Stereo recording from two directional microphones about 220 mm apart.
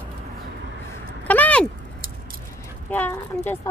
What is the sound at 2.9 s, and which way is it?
Speech, 10° left (ahead or behind).